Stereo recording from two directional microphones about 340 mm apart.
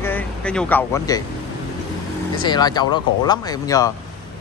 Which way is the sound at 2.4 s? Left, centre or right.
Centre.